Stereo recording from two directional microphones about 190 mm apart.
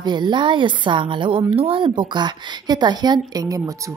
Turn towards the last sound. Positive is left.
turn(degrees=-20)  # may be behind; listen again after turning